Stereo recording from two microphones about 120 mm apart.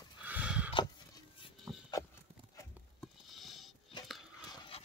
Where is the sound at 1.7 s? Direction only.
25° right (ahead or behind).